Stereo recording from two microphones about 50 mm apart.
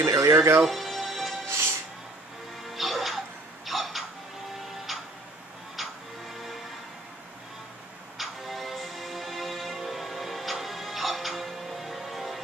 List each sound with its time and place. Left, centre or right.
0.0 s music: right
0.7 s music: centre
1.5 s music: right
2.7 s music: centre
5.8 s music: centre
8.2 s music: centre